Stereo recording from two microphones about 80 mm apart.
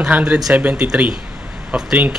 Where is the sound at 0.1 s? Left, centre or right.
Centre.